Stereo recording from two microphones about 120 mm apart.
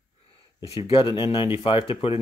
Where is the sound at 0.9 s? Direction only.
45° left (ahead or behind).